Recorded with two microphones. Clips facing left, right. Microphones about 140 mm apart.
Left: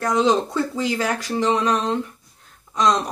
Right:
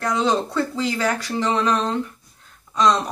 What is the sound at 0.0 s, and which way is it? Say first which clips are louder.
Speech: left 2 dB; 15° left (ahead or behind).